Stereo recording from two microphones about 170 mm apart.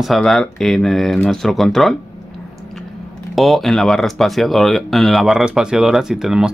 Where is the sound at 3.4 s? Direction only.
Centre (ahead or behind).